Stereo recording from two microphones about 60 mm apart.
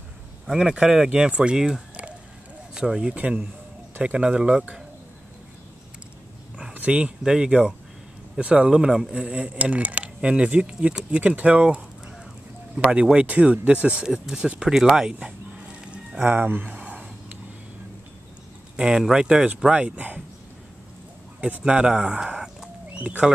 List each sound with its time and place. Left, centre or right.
0.5 s speech: centre
2.7 s speech: centre
6.7 s a sound: right
7.2 s speech: centre
16.3 s speech: right
16.6 s a sound: right
18.8 s speech: centre
19.7 s speech: right
21.4 s speech: centre
22.9 s speech: right